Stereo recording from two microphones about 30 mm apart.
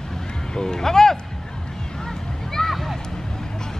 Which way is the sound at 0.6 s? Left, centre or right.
Left.